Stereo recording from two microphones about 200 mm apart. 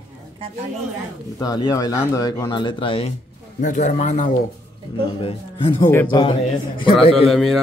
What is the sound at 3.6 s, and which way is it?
A man's voice, 40° left (ahead or behind).